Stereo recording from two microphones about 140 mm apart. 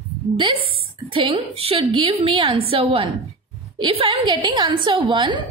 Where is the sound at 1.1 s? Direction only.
45° right (ahead or behind).